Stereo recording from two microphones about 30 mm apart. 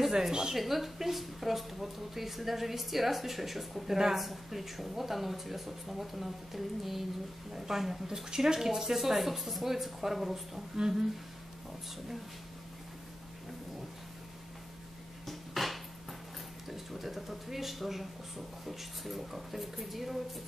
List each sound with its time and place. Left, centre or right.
0.3 s speech: right
0.6 s a woman's voice: centre
8.1 s speech: right
10.8 s speech: right
15.2 s a sound: centre
16.6 s a woman's voice: centre